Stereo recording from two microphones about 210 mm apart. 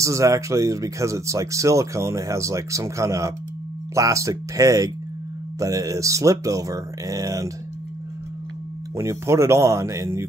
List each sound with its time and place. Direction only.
0.0 s speech: 15° right (ahead or behind)
8.9 s speech: 15° right (ahead or behind)